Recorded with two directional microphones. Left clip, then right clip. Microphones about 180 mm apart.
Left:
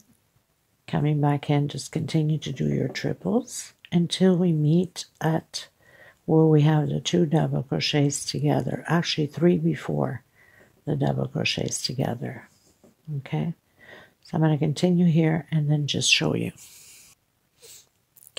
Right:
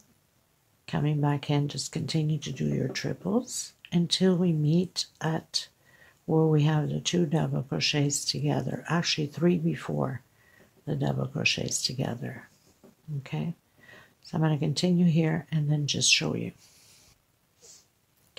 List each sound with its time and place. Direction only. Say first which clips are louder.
0.8 s speech: left 4 dB; 35° left (ahead or behind)
6.2 s speech: left 5 dB; 30° left (ahead or behind); by 16.6 s 45° left (ahead or behind)
17.6 s a sound: left 5 dB; 35° left (ahead or behind)